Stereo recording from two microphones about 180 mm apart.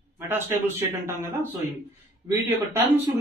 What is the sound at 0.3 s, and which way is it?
Speech, 15° right (ahead or behind).